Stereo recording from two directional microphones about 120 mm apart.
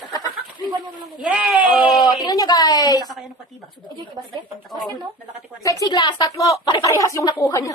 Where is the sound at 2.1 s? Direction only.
35° left (ahead or behind).